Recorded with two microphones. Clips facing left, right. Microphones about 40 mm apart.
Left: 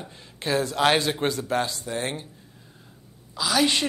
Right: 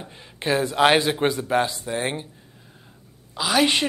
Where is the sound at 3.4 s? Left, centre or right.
Right.